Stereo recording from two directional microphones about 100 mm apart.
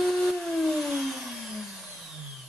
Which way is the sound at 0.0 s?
Centre (ahead or behind).